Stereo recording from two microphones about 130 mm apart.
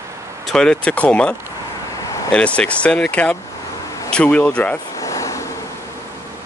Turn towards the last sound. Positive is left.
turn(degrees=25)  # may be behind; listen again after turning